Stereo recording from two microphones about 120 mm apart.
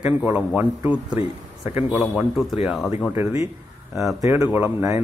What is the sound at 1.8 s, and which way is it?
Speech, 10° right (ahead or behind).